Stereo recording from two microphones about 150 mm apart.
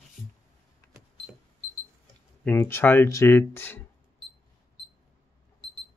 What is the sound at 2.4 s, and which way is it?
Speech, 15° left (ahead or behind).